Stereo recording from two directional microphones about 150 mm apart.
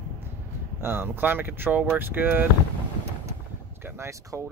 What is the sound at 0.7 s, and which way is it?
Speech, 15° right (ahead or behind).